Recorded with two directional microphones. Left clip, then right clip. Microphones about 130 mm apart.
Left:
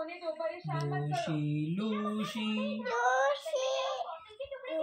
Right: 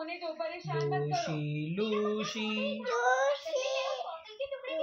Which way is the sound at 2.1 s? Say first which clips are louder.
Right 2 dB; 35° right (ahead or behind).